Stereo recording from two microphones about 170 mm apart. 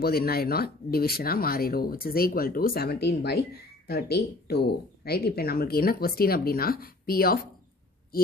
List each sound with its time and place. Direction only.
0.0 s speech: 65° left (ahead or behind)